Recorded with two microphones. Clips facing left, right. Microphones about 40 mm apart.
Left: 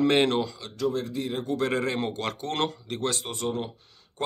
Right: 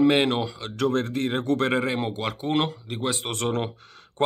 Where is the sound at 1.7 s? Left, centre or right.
Centre.